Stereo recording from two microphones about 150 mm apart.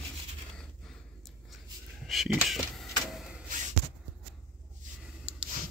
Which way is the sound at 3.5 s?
65° right (ahead or behind).